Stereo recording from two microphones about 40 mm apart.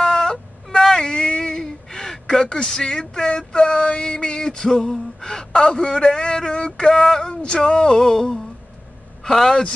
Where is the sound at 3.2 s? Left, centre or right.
Left.